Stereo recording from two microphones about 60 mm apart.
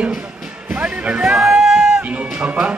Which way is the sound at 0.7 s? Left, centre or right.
Right.